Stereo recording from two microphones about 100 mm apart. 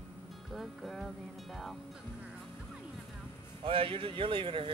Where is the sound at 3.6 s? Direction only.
60° right (ahead or behind).